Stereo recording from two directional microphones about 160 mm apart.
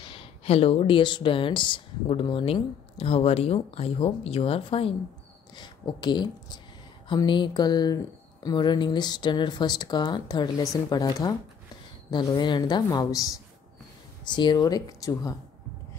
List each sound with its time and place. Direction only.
0.1 s speech: 35° left (ahead or behind)